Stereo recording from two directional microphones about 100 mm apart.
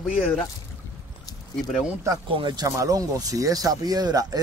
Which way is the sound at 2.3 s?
45° right (ahead or behind).